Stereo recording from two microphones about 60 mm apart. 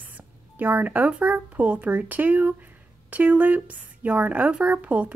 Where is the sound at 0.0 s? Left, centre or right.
Right.